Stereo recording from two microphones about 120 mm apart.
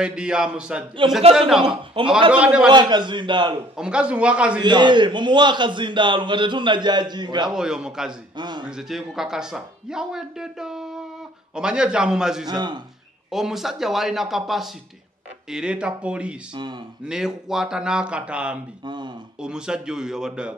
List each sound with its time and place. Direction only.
0.0 s speech: 5° right (ahead or behind)
2.7 s a man's voice: 40° right (ahead or behind)
3.7 s speech: 10° right (ahead or behind)
4.6 s a man's voice: 40° right (ahead or behind)
7.4 s speech: 5° right (ahead or behind)
8.4 s a man's voice: 40° right (ahead or behind)
8.6 s speech: 5° right (ahead or behind)
12.4 s a man's voice: 35° right (ahead or behind)
13.3 s speech: centre (ahead or behind)
18.9 s a sound: 40° right (ahead or behind)
19.4 s speech: 5° right (ahead or behind)